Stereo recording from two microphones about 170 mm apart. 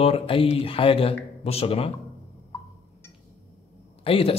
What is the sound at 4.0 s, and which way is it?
Speech, 35° left (ahead or behind).